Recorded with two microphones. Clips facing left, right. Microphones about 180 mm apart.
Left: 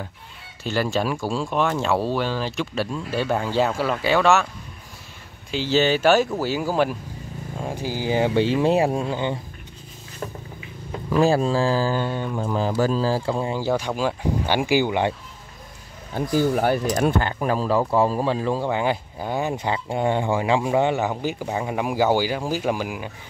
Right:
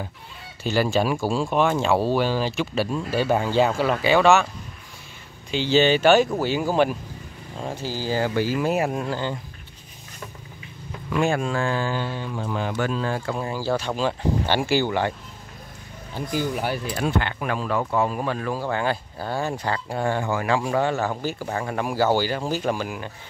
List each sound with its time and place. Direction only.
0.7 s speech: centre (ahead or behind)
5.5 s speech: centre (ahead or behind)
7.6 s speech: 15° left (ahead or behind); by 9.1 s 30° left (ahead or behind)
9.1 s speech: 20° left (ahead or behind)
11.1 s speech: 35° left (ahead or behind)
12.0 s speech: 50° left (ahead or behind)
12.4 s speech: 35° left (ahead or behind)
13.4 s speech: 20° left (ahead or behind)
16.1 s speech: 55° left (ahead or behind); by 23.0 s 10° left (ahead or behind)